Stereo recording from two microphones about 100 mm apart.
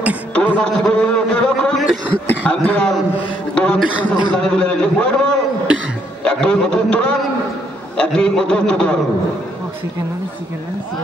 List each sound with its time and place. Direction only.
0.3 s a man's voice: 10° left (ahead or behind)